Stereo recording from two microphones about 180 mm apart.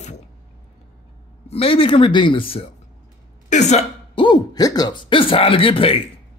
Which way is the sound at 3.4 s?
40° left (ahead or behind).